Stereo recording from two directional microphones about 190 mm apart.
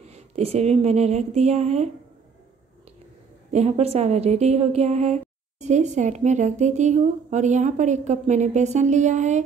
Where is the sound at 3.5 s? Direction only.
35° right (ahead or behind).